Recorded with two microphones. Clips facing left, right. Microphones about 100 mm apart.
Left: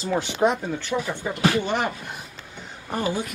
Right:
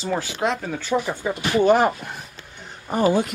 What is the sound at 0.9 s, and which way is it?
Speech, 30° right (ahead or behind).